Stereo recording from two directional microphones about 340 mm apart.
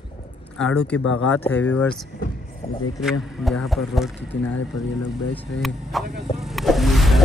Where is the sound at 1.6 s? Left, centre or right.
Centre.